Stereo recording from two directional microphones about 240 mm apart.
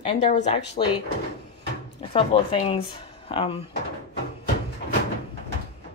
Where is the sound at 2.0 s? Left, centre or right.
Left.